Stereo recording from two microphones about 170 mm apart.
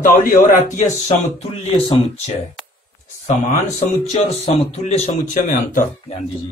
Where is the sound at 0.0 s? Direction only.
50° left (ahead or behind); by 2.3 s 35° left (ahead or behind).